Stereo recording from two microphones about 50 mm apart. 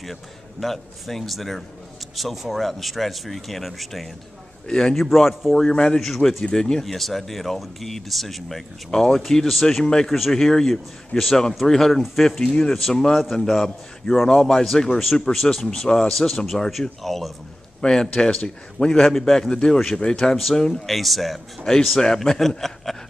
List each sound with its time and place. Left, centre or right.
0.0 s speech: centre
4.6 s speech: centre
4.9 s speech: centre
5.6 s speech: centre
5.9 s speech: centre
6.5 s speech: centre
16.2 s speech: centre
18.1 s speech: centre
20.8 s speech: centre